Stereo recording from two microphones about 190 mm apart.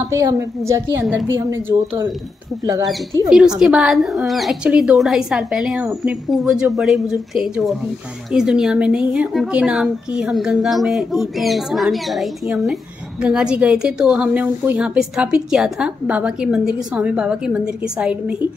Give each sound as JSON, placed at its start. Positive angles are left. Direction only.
{"t": 0.1, "sound": "a woman's voice", "side_deg": -15}
{"t": 3.3, "sound": "a woman's voice", "side_deg": -5}